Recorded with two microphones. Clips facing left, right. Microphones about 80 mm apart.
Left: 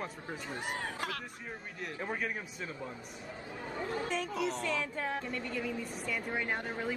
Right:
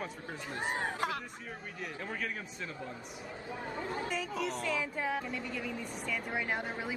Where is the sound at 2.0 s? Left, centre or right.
Centre.